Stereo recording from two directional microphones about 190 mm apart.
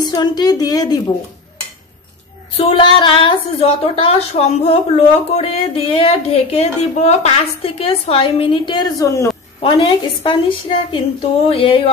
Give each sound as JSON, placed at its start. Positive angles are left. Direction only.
{"t": 0.0, "sound": "a woman's voice", "side_deg": 20}
{"t": 2.5, "sound": "a woman's voice", "side_deg": 30}
{"t": 9.6, "sound": "a woman's voice", "side_deg": 30}